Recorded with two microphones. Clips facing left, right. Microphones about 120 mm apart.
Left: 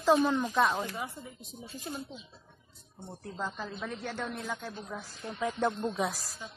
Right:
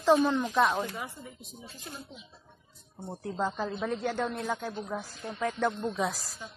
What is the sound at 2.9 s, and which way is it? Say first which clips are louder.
Speech: right 5 dB; 25° right (ahead or behind).